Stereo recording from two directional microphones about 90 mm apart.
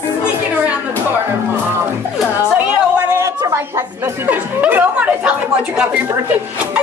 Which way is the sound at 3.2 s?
35° right (ahead or behind).